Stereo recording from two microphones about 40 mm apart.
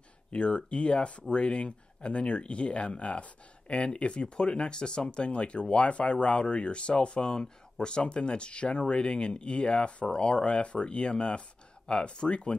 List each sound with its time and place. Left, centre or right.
0.3 s speech: left